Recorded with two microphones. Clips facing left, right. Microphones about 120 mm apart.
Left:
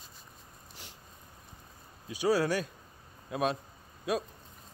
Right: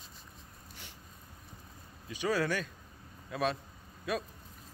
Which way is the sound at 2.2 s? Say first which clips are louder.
Left 4 dB; 35° left (ahead or behind).